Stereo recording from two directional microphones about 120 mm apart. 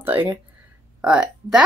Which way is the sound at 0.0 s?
15° right (ahead or behind).